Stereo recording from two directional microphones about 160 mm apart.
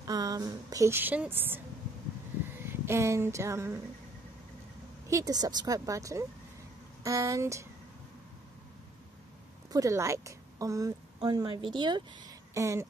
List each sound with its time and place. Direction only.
0.0 s speech: 20° right (ahead or behind)
5.0 s a woman's voice: 20° right (ahead or behind)
9.7 s a woman's voice: 20° right (ahead or behind)